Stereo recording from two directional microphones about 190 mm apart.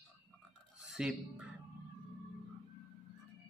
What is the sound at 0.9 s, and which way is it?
Speech, 5° right (ahead or behind).